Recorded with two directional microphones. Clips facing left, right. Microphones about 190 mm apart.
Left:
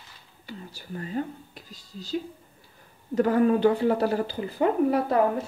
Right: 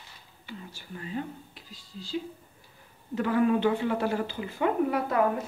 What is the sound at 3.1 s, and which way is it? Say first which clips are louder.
Speech: left 4 dB; 40° left (ahead or behind).